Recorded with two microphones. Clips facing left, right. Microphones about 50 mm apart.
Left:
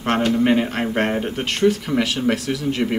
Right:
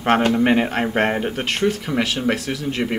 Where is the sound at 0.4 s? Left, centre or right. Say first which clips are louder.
Right 1 dB; centre.